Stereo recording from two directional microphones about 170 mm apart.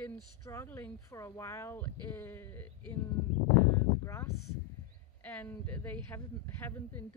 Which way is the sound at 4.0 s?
15° left (ahead or behind).